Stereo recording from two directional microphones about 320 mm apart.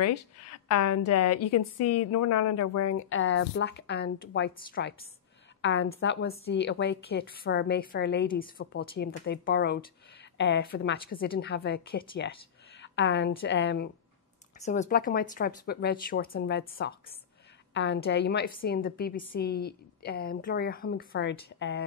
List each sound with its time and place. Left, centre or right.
0.0 s a woman's voice: left
3.1 s a woman's voice: left
14.6 s a woman's voice: left